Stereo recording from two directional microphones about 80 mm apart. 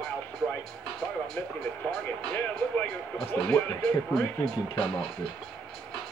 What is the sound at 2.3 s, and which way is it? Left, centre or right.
Speech, centre.